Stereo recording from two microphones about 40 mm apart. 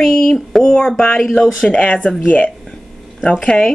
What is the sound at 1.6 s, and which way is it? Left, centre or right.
Speech, left.